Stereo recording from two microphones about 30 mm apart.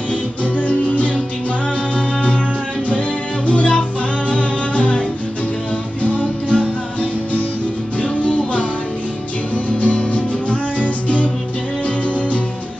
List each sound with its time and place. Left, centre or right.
0.6 s music: left
2.0 s music: left
3.4 s music: left
6.0 s music: left
9.8 s music: left